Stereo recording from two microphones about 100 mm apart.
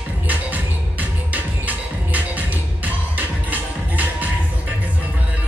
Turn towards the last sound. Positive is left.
turn(degrees=-15)  # may be behind; listen again after turning